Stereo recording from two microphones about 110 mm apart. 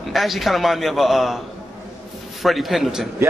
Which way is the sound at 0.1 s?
Centre (ahead or behind).